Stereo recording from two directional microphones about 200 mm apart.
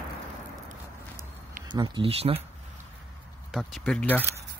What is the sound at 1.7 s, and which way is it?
Speech, 20° right (ahead or behind).